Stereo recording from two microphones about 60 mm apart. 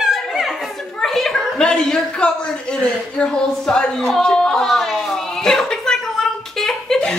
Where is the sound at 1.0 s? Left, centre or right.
Centre.